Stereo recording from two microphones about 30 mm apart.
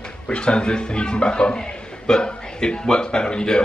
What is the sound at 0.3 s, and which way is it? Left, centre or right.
A man's voice, left.